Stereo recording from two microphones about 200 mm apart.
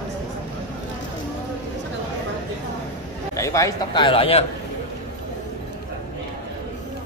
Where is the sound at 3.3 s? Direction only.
15° left (ahead or behind).